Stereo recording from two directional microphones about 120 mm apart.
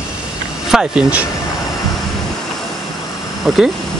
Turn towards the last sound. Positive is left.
turn(degrees=0)  # may be behind; listen again after turning